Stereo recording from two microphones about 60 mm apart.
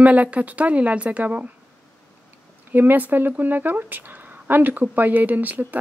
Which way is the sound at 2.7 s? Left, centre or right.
Right.